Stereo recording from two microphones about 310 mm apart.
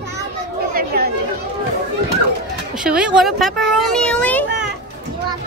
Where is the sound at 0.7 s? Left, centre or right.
Right.